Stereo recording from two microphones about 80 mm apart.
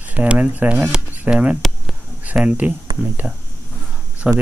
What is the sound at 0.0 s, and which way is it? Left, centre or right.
Speech, centre.